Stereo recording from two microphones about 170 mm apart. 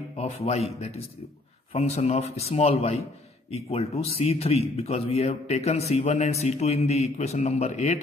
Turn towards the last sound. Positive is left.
turn(degrees=45)  # may be behind; listen again after turning